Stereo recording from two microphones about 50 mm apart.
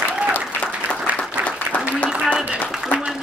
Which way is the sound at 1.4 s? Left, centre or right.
Right.